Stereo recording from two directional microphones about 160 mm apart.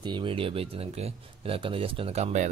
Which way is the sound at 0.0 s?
30° right (ahead or behind).